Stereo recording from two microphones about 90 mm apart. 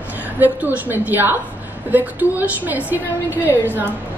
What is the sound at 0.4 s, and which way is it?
A woman's voice, 20° right (ahead or behind).